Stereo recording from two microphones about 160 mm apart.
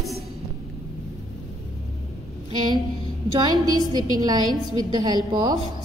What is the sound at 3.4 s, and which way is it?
A woman's voice, 25° right (ahead or behind).